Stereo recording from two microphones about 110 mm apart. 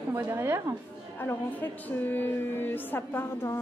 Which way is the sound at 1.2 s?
20° left (ahead or behind).